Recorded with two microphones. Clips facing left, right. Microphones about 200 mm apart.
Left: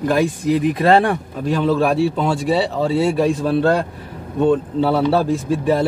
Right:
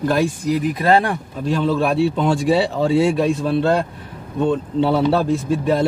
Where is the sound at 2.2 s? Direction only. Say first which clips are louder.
Right 1 dB; 5° left (ahead or behind).